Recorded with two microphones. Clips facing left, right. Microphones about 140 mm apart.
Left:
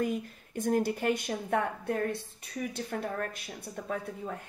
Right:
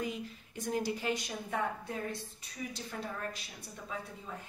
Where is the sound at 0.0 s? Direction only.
50° left (ahead or behind).